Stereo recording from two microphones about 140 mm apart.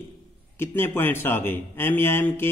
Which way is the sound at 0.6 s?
15° left (ahead or behind).